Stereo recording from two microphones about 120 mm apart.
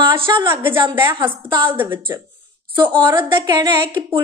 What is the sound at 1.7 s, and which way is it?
Speech, 15° right (ahead or behind).